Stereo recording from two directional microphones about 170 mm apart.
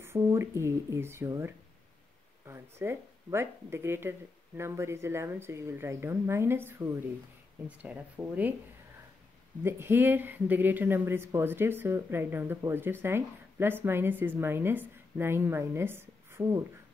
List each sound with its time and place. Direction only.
0.0 s speech: 15° right (ahead or behind)
9.6 s speech: 15° right (ahead or behind)